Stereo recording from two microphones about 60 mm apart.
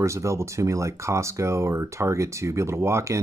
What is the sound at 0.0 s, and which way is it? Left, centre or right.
Speech, right.